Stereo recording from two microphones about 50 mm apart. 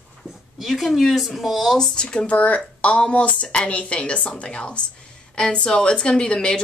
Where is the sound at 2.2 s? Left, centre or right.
Left.